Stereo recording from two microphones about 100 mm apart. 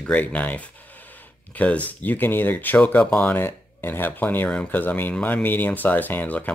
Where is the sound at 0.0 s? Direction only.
15° left (ahead or behind).